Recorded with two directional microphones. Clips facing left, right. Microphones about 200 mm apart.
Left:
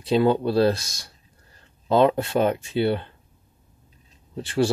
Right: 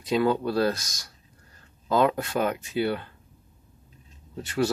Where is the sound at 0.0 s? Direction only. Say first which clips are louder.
Left 4 dB; 30° left (ahead or behind).